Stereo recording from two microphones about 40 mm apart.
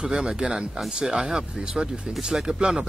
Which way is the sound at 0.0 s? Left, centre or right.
Centre.